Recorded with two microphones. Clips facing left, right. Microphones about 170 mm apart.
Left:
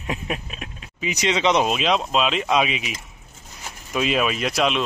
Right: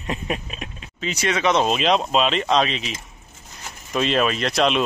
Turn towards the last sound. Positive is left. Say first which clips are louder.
# right 2 dB
turn(degrees=5)  # may be behind; listen again after turning